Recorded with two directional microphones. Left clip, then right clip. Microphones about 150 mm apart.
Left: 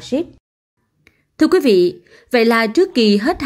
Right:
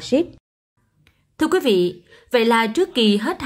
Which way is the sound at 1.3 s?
20° left (ahead or behind).